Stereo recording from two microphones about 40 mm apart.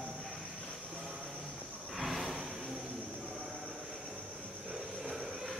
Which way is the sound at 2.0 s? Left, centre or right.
Centre.